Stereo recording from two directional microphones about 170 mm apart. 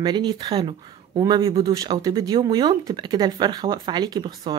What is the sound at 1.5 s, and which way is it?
Speech, 35° right (ahead or behind).